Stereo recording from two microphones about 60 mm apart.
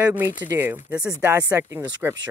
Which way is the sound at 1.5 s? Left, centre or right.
Right.